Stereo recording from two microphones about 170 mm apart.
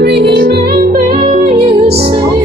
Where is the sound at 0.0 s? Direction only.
75° right (ahead or behind); by 2.2 s 35° right (ahead or behind).